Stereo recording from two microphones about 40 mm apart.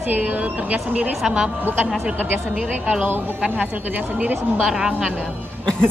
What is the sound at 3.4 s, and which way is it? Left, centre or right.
Speech, right.